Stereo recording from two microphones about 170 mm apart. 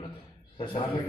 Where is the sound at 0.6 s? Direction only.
30° left (ahead or behind).